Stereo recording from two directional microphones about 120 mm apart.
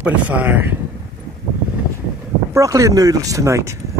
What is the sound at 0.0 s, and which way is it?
Speech, 15° right (ahead or behind).